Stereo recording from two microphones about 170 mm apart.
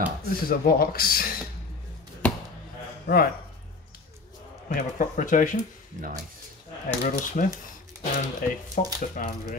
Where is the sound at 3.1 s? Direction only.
90° left.